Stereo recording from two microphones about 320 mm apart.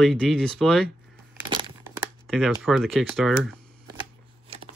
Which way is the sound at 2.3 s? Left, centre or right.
Centre.